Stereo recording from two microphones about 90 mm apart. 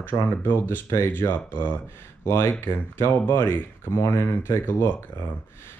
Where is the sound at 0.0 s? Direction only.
20° left (ahead or behind).